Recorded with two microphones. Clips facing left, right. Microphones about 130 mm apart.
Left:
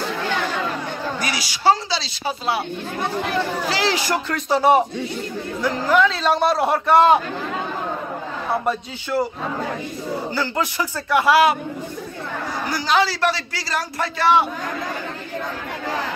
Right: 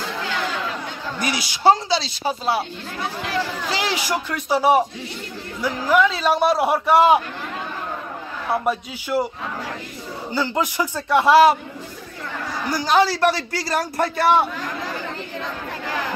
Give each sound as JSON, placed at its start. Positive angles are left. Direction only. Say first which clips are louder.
{"t": 1.2, "sound": "a man's voice", "louder": "right 2 dB", "side_deg": -20}
{"t": 2.2, "sound": "speech", "louder": "even", "side_deg": -40}
{"t": 3.7, "sound": "a man's voice", "louder": "left 1 dB", "side_deg": -15}
{"t": 8.6, "sound": "a man's voice", "louder": "even", "side_deg": -10}
{"t": 10.3, "sound": "a man's voice", "louder": "right 4 dB", "side_deg": -15}
{"t": 12.9, "sound": "a man's voice", "louder": "right 2 dB", "side_deg": -45}